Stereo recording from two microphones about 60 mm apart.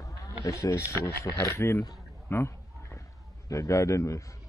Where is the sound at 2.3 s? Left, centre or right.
Left.